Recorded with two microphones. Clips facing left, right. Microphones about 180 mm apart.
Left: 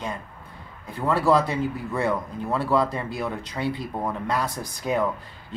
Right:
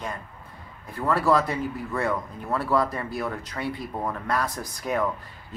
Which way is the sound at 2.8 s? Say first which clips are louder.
Left 1 dB; 25° left (ahead or behind).